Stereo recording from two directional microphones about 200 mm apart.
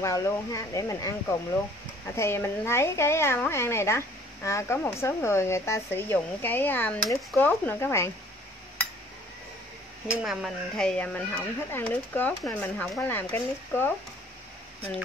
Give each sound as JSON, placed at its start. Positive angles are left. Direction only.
{"t": 0.0, "sound": "a woman's voice", "side_deg": 15}
{"t": 2.1, "sound": "a woman's voice", "side_deg": 10}
{"t": 10.2, "sound": "a woman's voice", "side_deg": 0}